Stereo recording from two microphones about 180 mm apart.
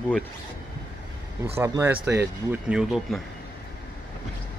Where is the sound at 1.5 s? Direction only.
15° right (ahead or behind).